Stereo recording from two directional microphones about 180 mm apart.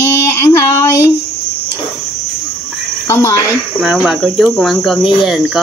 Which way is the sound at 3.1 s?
15° left (ahead or behind).